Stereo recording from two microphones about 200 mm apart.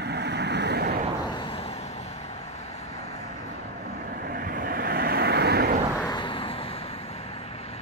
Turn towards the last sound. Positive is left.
turn(degrees=25)  # may be behind; listen again after turning